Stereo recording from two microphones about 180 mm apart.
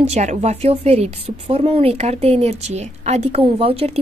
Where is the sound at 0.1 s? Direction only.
40° right (ahead or behind).